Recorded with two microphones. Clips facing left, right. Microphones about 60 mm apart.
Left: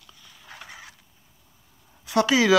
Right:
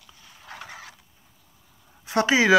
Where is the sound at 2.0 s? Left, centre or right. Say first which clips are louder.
Even; right.